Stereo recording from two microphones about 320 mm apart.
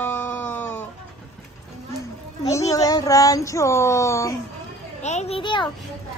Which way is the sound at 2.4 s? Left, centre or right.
Centre.